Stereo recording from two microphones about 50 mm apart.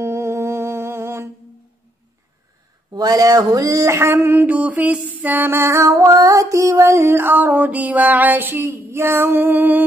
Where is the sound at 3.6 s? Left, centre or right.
Right.